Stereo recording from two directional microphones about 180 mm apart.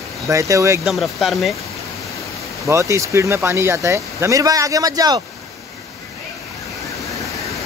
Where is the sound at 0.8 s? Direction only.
Centre (ahead or behind).